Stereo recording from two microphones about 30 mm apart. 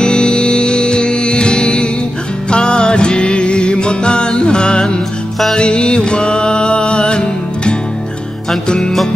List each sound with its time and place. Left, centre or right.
0.0 s music: left